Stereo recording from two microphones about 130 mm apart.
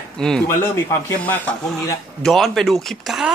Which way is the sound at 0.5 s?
20° left (ahead or behind).